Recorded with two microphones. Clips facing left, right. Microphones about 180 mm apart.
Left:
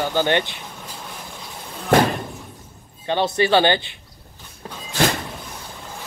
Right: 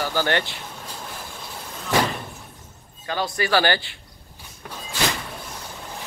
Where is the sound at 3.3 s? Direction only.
25° left (ahead or behind).